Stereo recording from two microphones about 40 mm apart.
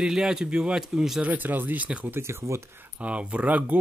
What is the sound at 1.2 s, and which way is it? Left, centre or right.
Speech, right.